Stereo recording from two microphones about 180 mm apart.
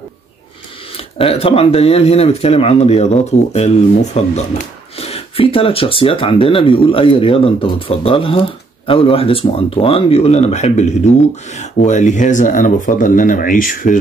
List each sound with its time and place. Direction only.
0.9 s speech: 30° left (ahead or behind); by 13.9 s 50° left (ahead or behind)